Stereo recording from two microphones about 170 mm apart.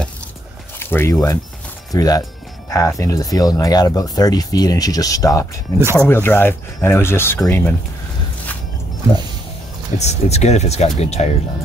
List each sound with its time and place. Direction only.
0.7 s speech: 15° left (ahead or behind)
9.9 s speech: 40° left (ahead or behind)